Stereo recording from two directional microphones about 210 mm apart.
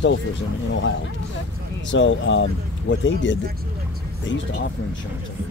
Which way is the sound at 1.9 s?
60° left (ahead or behind).